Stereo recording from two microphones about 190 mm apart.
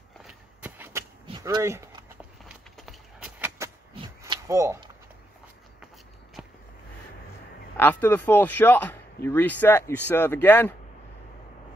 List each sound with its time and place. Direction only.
0.2 s walk: 10° right (ahead or behind)
1.4 s speech: 15° right (ahead or behind)
2.4 s a sound: 5° right (ahead or behind)
7.7 s speech: 10° left (ahead or behind)